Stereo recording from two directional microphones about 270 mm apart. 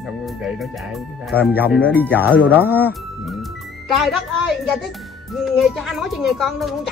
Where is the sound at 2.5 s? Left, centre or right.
Centre.